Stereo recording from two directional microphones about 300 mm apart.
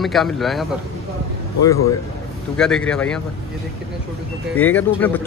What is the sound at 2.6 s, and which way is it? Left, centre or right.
Speech, centre.